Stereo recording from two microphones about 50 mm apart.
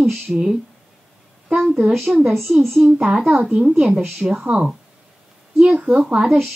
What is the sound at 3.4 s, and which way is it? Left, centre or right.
A woman's voice, right.